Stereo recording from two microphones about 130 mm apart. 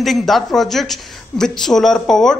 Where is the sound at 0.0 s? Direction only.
Centre (ahead or behind).